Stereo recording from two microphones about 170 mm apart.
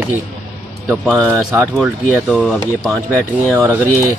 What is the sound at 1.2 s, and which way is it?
Speech, 10° right (ahead or behind).